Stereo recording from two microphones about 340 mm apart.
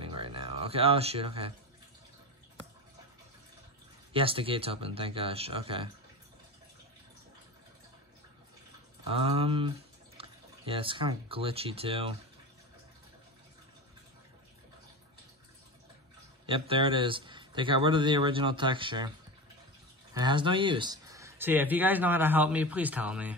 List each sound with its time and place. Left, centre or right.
0.0 s music: centre
4.1 s speech: centre
9.1 s speech: centre
16.4 s speech: centre
20.2 s speech: centre